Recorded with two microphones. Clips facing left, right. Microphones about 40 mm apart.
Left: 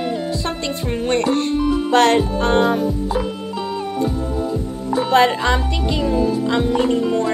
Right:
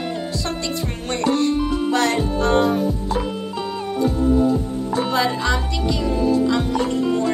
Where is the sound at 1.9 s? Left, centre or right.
Left.